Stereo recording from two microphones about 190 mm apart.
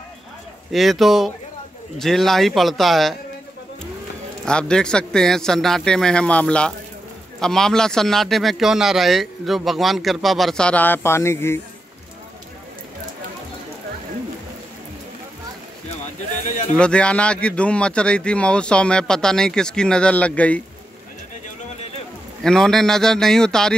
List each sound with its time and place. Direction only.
0.7 s speech: centre (ahead or behind)
4.5 s speech: 5° left (ahead or behind)
16.7 s speech: 5° left (ahead or behind)
22.4 s speech: 5° left (ahead or behind)